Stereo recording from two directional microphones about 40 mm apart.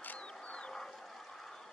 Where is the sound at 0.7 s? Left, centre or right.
Centre.